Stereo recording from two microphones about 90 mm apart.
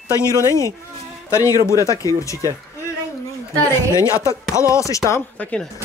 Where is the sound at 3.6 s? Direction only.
30° left (ahead or behind).